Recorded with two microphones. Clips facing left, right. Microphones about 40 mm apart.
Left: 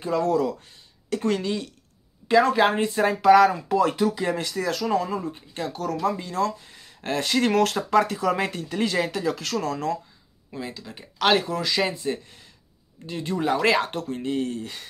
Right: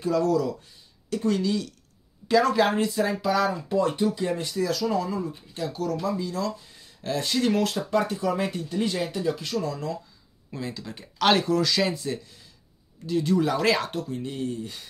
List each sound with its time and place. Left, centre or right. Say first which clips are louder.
0.0 s speech: left 1 dB; left
2.2 s speech: left 2 dB; left
3.0 s speech: left 11 dB; left
3.6 s speech: left 2 dB; left
4.6 s speech: even; left
9.7 s speech: left 4 dB; left
10.5 s speech: even; centre; by 13.8 s left
13.8 s speech: left 3 dB; left
14.4 s speech: left 2 dB; left